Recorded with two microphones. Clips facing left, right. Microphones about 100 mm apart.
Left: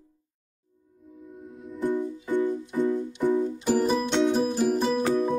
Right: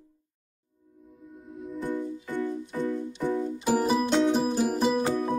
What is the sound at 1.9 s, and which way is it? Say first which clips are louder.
Music: left 5 dB; 15° left (ahead or behind).